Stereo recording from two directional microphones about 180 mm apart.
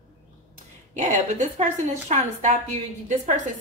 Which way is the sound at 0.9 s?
40° right (ahead or behind).